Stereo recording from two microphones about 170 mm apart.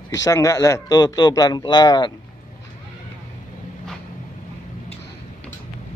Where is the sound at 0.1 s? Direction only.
20° left (ahead or behind).